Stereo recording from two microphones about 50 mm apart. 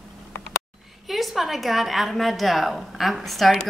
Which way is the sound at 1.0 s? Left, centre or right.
Centre.